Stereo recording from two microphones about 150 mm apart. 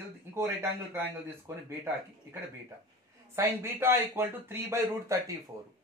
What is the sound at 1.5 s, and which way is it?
Speech, 20° right (ahead or behind).